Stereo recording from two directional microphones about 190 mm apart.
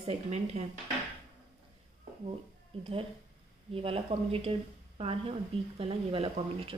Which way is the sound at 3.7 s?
30° right (ahead or behind).